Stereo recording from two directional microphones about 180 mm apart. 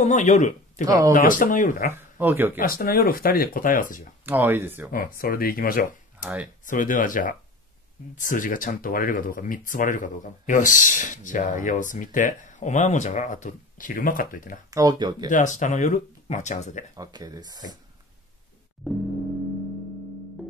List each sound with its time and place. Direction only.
0.0 s speech: 40° left (ahead or behind)
0.8 s speech: 20° right (ahead or behind)
1.1 s speech: 45° left (ahead or behind)
1.9 s speech: 10° right (ahead or behind)
2.6 s speech: 55° left (ahead or behind)
4.3 s speech: 10° right (ahead or behind)
4.9 s speech: 50° left (ahead or behind)
14.7 s speech: 20° right (ahead or behind)
15.2 s speech: 45° left (ahead or behind)
16.9 s speech: 20° right (ahead or behind)
18.8 s music: centre (ahead or behind)